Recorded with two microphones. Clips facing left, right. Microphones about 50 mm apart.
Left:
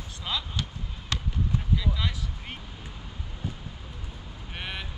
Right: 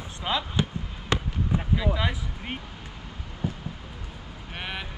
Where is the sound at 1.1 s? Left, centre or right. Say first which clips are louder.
Right 4 dB; right.